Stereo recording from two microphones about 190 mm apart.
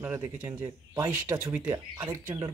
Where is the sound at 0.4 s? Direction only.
10° right (ahead or behind).